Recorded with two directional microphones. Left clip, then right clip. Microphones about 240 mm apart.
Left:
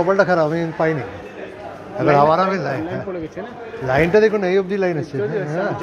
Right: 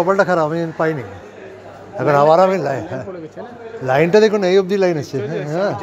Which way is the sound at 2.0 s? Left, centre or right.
Right.